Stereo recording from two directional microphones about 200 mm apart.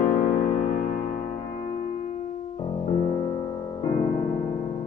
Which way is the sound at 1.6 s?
35° left (ahead or behind).